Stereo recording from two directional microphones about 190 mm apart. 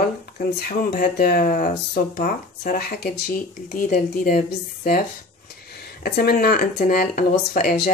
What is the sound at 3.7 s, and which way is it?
Speech, 40° left (ahead or behind).